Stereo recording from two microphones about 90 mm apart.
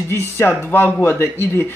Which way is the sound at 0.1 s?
30° left (ahead or behind).